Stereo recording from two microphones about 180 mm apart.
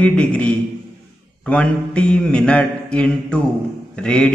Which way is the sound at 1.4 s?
5° left (ahead or behind).